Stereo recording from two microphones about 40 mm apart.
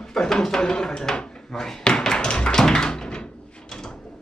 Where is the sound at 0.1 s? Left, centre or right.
Centre.